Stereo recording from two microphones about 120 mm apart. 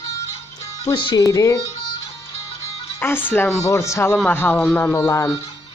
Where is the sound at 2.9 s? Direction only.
20° left (ahead or behind).